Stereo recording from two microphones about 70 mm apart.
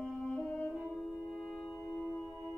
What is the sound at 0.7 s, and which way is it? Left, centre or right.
Music, centre.